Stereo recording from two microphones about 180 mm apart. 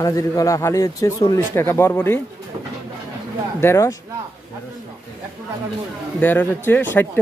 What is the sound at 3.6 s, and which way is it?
Speech, 15° left (ahead or behind).